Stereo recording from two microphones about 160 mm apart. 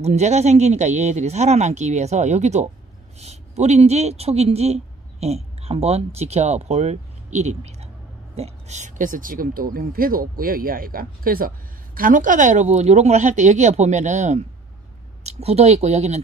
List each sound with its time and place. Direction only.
0.0 s speech: 45° right (ahead or behind)